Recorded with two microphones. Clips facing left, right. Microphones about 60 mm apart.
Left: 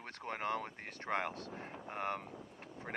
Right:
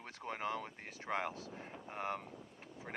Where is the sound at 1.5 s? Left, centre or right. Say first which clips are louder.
Left 3 dB; left.